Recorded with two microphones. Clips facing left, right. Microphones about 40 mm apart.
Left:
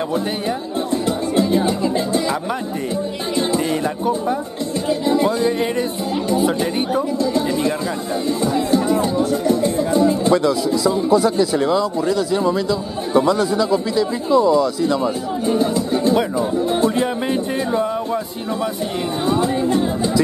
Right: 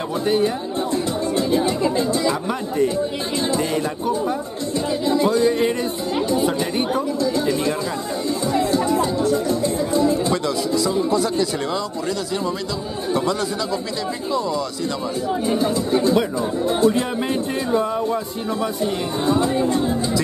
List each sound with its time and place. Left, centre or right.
0.1 s speech: centre
3.5 s speech: centre
10.3 s speech: centre
16.3 s speech: left
17.0 s speech: centre